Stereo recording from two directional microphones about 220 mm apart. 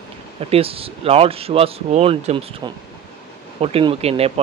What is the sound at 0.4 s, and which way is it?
Speech, 25° right (ahead or behind).